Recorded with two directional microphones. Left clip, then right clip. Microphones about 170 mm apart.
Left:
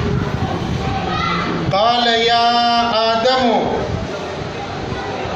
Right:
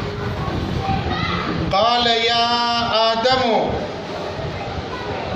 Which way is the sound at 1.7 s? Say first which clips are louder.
Left 2 dB; 35° right (ahead or behind).